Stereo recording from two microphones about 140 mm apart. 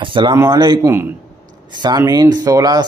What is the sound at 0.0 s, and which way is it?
Speech, 35° right (ahead or behind).